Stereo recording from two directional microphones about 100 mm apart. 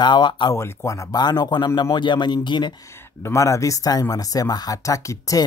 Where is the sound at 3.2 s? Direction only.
30° left (ahead or behind).